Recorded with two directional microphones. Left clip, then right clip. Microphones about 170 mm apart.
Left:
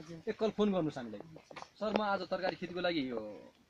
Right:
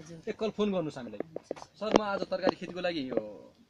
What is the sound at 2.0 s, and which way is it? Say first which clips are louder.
Speech: right 4 dB; 15° right (ahead or behind).